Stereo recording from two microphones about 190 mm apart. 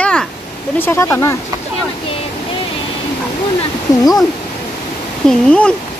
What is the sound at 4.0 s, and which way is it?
Speech, 20° left (ahead or behind).